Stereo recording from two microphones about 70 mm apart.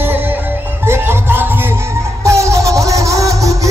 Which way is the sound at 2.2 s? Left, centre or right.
Right.